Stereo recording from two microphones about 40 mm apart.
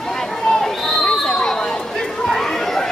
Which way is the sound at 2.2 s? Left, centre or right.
Centre.